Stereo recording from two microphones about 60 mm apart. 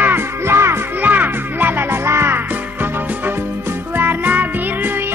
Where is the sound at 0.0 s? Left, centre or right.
Right.